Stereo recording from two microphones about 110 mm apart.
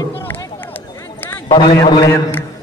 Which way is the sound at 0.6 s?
20° left (ahead or behind).